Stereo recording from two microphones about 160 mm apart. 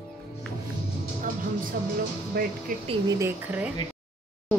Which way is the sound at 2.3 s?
70° right (ahead or behind).